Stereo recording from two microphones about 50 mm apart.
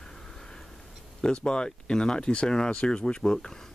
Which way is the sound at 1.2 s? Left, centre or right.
Centre.